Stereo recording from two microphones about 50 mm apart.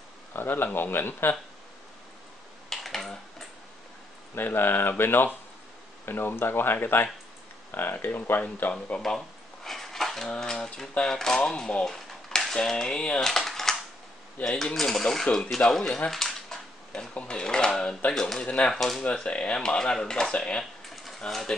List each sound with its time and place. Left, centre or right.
0.3 s speech: left
2.7 s typing: centre
4.4 s speech: left
9.7 s speech: centre
13.2 s typing: centre
14.6 s speech: centre
16.1 s typewriter: centre
17.1 s a sound: left
17.7 s speech: centre
18.7 s speech: centre
19.1 s speech: left